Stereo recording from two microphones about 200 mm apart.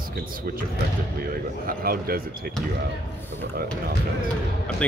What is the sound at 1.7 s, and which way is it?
Speech, 50° right (ahead or behind).